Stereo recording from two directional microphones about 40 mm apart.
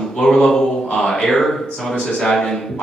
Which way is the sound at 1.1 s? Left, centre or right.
Centre.